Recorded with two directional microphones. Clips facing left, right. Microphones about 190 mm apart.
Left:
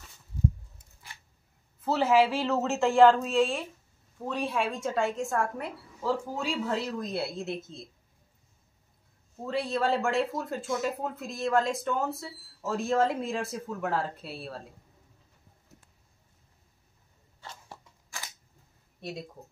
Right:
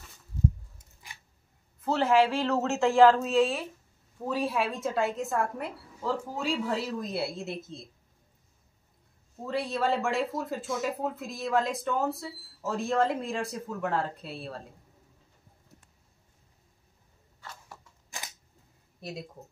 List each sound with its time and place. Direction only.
1.8 s speech: 5° left (ahead or behind)
9.4 s speech: centre (ahead or behind)
17.4 s a sound: 30° left (ahead or behind)
18.1 s camera: 20° right (ahead or behind)
18.9 s speech: centre (ahead or behind)